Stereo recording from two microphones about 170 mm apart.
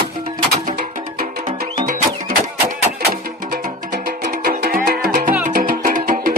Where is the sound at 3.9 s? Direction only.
65° right (ahead or behind).